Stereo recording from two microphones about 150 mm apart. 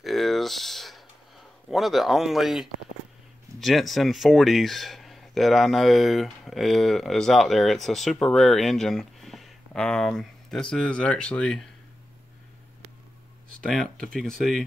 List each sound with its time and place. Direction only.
0.0 s a sound: centre (ahead or behind)
1.7 s speech: centre (ahead or behind)
13.6 s speech: 5° left (ahead or behind)